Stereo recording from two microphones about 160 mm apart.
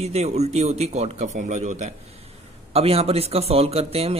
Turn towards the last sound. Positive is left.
turn(degrees=-40)  # may be behind; listen again after turning